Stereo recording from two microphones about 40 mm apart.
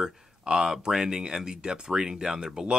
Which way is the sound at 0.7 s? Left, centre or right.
Centre.